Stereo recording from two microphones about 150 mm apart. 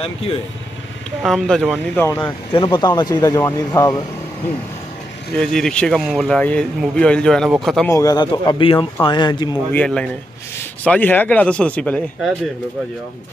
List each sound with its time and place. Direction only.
0.0 s speech: 40° left (ahead or behind)
1.2 s speech: centre (ahead or behind)
2.0 s speech: 15° left (ahead or behind)
2.5 s speech: 30° left (ahead or behind)
5.4 s speech: 5° left (ahead or behind)
7.9 s speech: 25° left (ahead or behind)
9.7 s speech: 10° left (ahead or behind)